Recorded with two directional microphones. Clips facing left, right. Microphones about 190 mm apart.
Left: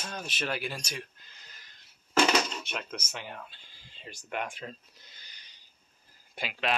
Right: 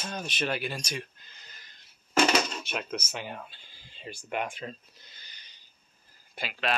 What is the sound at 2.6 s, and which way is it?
Speech, 10° right (ahead or behind).